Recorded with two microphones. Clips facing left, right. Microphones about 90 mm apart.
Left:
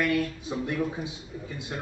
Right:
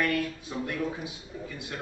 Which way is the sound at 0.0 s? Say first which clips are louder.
Left 2 dB; 20° left (ahead or behind).